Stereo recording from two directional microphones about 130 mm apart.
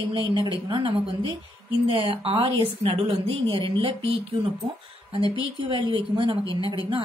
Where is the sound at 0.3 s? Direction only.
40° right (ahead or behind).